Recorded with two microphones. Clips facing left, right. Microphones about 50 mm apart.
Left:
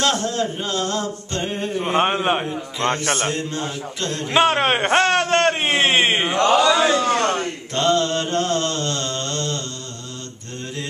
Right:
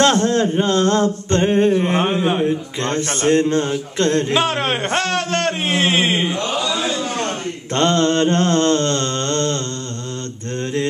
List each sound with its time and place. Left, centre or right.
0.0 s mantra: right
2.0 s a man's voice: left
3.3 s mantra: right
4.3 s a man's voice: centre
6.3 s speech: left
7.7 s mantra: right